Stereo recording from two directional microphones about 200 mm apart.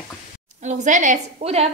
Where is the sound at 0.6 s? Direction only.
40° right (ahead or behind).